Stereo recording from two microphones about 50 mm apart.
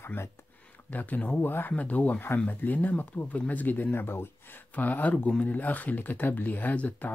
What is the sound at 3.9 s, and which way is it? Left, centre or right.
Speech, left.